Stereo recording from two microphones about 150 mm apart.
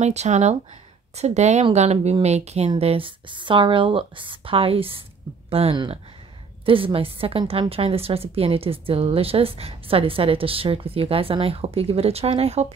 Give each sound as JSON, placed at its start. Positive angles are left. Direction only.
{"t": 0.0, "sound": "speech", "side_deg": -50}